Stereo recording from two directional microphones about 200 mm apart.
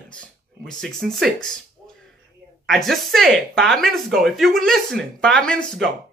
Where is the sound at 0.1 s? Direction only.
5° left (ahead or behind).